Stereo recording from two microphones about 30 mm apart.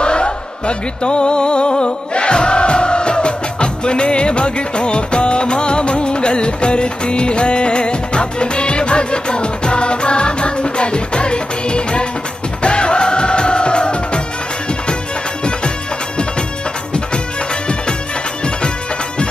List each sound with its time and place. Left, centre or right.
0.0 s music: left